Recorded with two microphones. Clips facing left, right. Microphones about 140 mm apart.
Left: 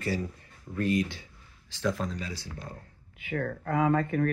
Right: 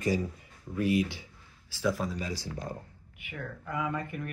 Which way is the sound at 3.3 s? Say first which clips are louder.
Left 7 dB; 55° left (ahead or behind).